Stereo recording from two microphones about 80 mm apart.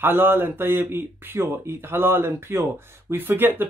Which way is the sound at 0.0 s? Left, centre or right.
Right.